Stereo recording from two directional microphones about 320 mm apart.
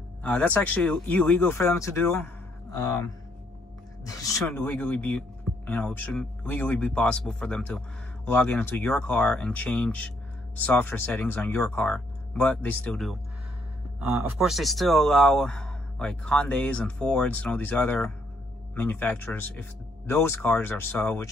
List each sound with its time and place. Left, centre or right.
0.2 s speech: centre
4.0 s speech: centre